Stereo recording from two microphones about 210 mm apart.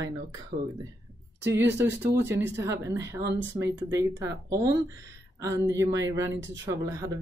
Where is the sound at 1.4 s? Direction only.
10° right (ahead or behind).